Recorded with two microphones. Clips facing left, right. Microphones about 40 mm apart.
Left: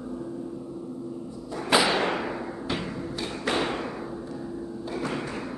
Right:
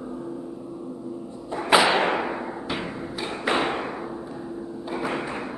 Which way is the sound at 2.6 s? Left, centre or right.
Centre.